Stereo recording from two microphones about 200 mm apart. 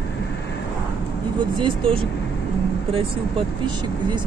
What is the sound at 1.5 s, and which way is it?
Speech, 25° right (ahead or behind).